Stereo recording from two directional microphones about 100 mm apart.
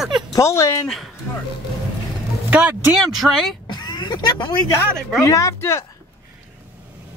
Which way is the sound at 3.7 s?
45° left (ahead or behind).